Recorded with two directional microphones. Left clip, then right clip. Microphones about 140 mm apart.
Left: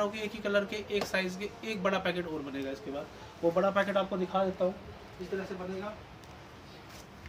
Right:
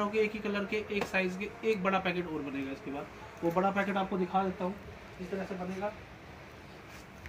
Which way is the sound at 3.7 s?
25° left (ahead or behind).